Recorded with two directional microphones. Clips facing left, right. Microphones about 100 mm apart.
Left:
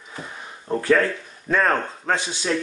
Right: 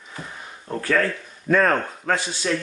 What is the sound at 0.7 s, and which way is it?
Speech, 20° left (ahead or behind).